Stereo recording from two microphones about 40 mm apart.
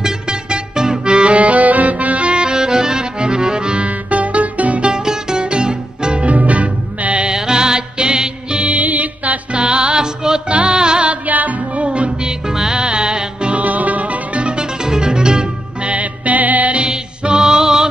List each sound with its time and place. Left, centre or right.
0.0 s music: centre
1.1 s accordion: right
5.0 s music: centre
6.2 s music: right
7.2 s music: centre
11.1 s music: right; by 12.8 s centre
12.8 s music: right
13.6 s music: right; by 17.8 s centre